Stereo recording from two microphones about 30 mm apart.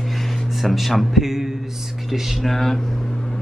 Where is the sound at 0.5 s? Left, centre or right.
Centre.